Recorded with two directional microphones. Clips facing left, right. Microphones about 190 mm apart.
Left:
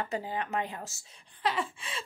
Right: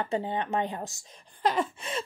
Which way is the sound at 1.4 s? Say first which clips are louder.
Right 5 dB; 45° right (ahead or behind).